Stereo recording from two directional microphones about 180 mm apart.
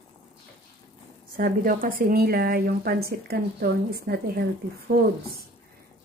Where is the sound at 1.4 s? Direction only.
50° right (ahead or behind).